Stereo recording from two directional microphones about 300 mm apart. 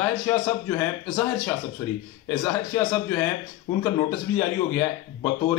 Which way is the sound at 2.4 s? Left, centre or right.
Centre.